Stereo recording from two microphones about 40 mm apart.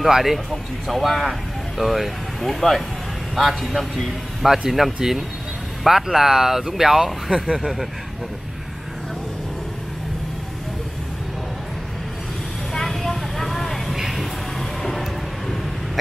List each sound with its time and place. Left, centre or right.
0.1 s a man's voice: centre
7.5 s a man's voice: centre
12.7 s vehicle: centre
13.9 s music: centre
14.8 s a sound: centre